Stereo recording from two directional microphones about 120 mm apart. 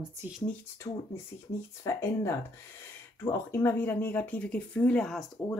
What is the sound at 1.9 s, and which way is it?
Speech, 20° left (ahead or behind).